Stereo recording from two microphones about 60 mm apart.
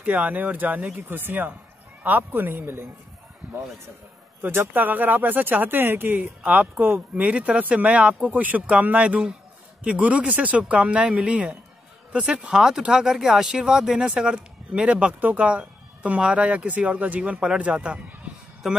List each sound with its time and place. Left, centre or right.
0.0 s speech: right
4.4 s speech: right
6.1 s speech: right
18.6 s speech: centre